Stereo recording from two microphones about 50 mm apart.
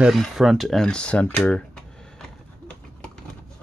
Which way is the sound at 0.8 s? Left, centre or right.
Centre.